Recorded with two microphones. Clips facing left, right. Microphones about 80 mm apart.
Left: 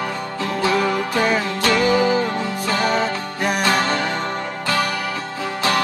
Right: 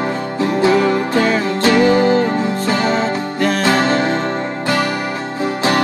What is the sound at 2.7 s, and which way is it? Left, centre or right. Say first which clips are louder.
Music: right 2 dB; right.